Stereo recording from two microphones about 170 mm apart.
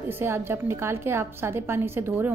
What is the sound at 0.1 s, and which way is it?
A woman's voice, 15° right (ahead or behind).